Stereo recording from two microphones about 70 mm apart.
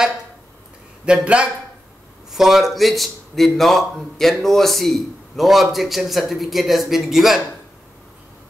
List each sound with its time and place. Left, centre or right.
1.0 s speech: centre
2.3 s a man's voice: centre